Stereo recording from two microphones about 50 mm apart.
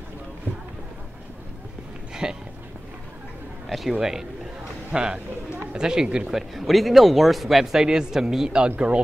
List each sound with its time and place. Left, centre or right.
2.2 s a man's voice: centre
3.6 s a man's voice: centre
6.3 s speech: centre
8.6 s speech: right